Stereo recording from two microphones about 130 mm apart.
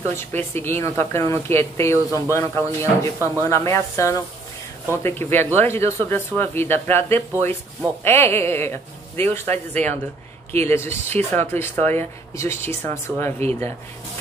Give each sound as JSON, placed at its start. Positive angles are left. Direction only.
{"t": 0.1, "sound": "speech", "side_deg": 15}